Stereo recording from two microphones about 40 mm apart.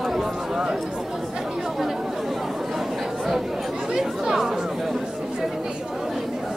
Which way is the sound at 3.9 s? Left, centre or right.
Centre.